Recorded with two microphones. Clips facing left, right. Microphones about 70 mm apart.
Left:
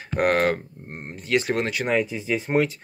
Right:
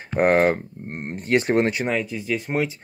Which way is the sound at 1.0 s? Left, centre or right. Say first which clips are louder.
Right 3 dB; right.